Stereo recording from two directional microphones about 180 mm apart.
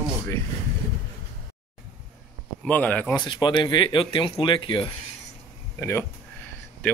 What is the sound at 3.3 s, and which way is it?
Speech, 25° left (ahead or behind).